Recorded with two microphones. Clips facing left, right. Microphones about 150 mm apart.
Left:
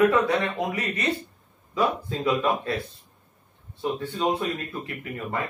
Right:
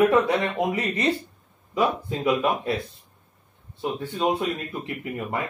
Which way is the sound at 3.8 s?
20° right (ahead or behind).